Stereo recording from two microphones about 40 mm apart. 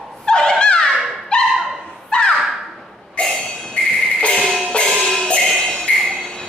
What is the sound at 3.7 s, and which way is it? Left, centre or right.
Music, left.